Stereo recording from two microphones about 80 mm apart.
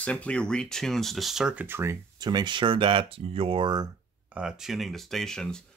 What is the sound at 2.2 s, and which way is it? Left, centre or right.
Speech, right.